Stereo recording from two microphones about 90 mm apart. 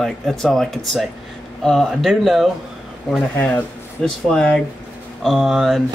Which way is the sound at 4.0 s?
10° left (ahead or behind).